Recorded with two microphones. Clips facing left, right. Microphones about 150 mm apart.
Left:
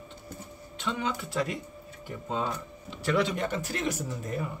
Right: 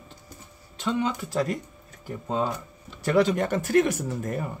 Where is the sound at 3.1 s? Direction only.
45° right (ahead or behind).